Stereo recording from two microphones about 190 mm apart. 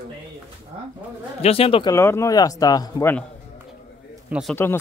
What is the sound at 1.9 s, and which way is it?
Speech, 15° left (ahead or behind).